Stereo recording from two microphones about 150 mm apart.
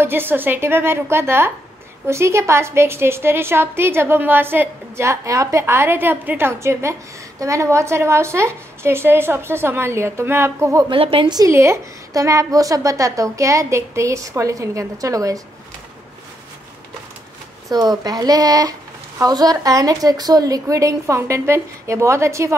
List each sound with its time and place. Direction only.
0.0 s a woman's voice: 15° right (ahead or behind)
10.9 s speech: 35° right (ahead or behind)
17.6 s speech: 25° right (ahead or behind)